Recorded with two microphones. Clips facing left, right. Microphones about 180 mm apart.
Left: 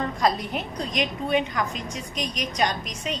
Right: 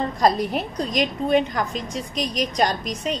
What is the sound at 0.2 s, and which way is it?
A woman's voice, 35° right (ahead or behind).